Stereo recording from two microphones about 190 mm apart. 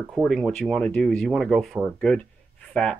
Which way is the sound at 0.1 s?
Centre (ahead or behind).